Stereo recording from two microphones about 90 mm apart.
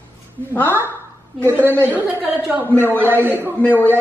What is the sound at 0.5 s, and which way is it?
Speech, 20° left (ahead or behind).